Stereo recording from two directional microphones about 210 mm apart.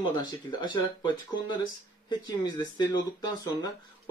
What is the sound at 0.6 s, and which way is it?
Speech, 20° left (ahead or behind).